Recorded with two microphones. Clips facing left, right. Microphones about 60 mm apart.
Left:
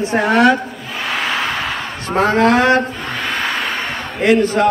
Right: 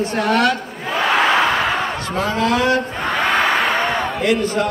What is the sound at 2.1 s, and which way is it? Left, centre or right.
Speech, left.